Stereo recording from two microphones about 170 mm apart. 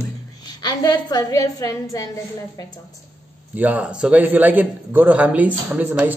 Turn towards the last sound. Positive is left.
turn(degrees=-10)  # may be behind; listen again after turning